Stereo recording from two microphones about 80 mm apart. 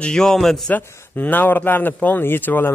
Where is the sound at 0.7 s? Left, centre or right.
Left.